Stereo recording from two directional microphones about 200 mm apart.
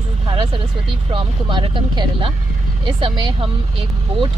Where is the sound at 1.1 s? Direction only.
25° right (ahead or behind).